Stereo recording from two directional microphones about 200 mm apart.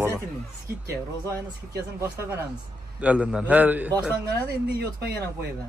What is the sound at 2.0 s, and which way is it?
A man's voice, 15° right (ahead or behind).